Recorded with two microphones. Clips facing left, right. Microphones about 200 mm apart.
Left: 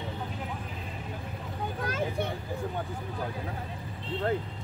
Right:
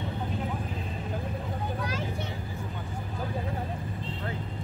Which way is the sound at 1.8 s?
50° left (ahead or behind).